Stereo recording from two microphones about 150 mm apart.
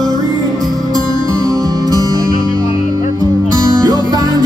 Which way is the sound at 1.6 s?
25° right (ahead or behind).